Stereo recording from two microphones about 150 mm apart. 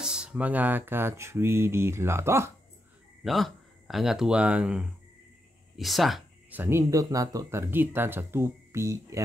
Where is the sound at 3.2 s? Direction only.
Centre (ahead or behind).